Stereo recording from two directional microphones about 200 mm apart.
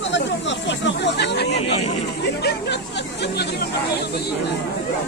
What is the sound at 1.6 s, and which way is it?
Speech, 35° left (ahead or behind).